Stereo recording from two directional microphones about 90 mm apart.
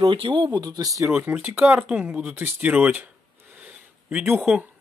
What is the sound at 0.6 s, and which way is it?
Speech, 45° right (ahead or behind).